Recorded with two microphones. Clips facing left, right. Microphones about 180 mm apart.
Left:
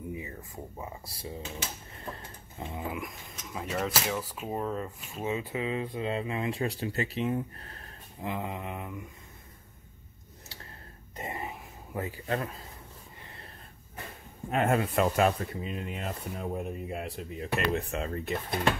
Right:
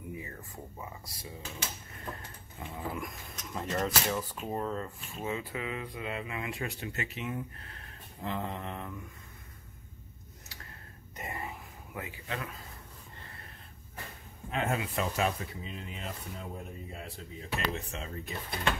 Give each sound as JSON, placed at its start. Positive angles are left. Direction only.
{"t": 0.1, "sound": "a sound", "side_deg": 15}
{"t": 0.7, "sound": "speech", "side_deg": 30}
{"t": 3.0, "sound": "speech", "side_deg": 0}
{"t": 8.2, "sound": "mantra", "side_deg": 10}
{"t": 11.1, "sound": "a sound", "side_deg": 25}
{"t": 12.0, "sound": "speech", "side_deg": 40}
{"t": 14.5, "sound": "speech", "side_deg": 55}